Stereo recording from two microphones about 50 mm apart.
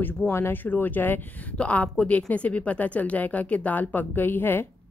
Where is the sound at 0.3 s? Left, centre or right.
Left.